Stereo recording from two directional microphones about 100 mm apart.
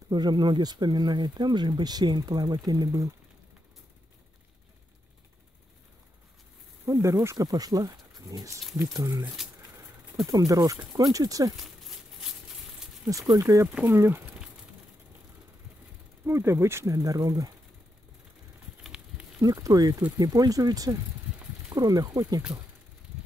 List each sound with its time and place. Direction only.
0.1 s speech: 45° right (ahead or behind)
6.9 s speech: 30° right (ahead or behind)
11.5 s a sound: centre (ahead or behind)
13.3 s speech: 35° right (ahead or behind)
13.7 s speech: 20° right (ahead or behind)
16.3 s speech: 25° right (ahead or behind)
18.8 s a sound: 5° right (ahead or behind)
19.4 s speech: 35° right (ahead or behind)